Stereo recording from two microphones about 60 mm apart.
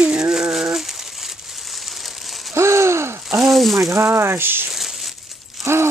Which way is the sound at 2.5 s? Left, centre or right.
Right.